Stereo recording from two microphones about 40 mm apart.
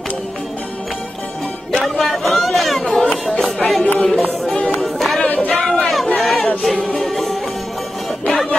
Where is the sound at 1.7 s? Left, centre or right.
Centre.